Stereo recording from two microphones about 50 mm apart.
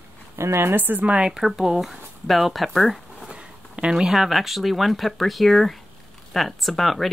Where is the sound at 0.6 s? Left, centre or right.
Right.